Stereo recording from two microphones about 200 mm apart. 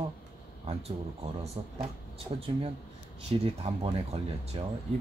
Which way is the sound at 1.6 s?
30° right (ahead or behind).